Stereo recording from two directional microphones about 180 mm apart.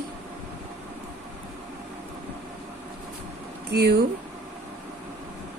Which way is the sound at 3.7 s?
65° right (ahead or behind).